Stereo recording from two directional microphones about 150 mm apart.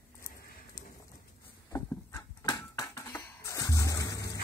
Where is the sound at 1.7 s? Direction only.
20° left (ahead or behind).